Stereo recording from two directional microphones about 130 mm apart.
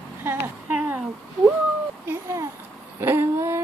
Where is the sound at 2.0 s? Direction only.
20° right (ahead or behind).